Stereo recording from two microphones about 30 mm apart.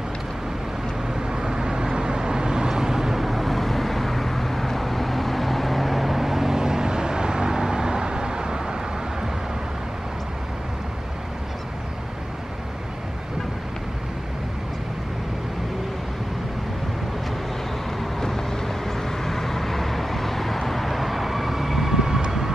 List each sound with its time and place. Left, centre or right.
1.3 s vehicle: right
3.3 s vehicle: centre; by 8.7 s right
18.2 s vehicle: centre